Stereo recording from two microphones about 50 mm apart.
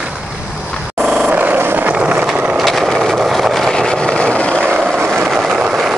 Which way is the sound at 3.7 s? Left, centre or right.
Centre.